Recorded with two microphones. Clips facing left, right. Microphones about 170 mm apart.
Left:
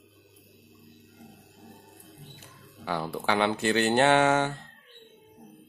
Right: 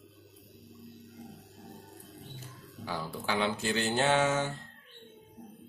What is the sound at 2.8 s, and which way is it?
Speech, 65° left (ahead or behind).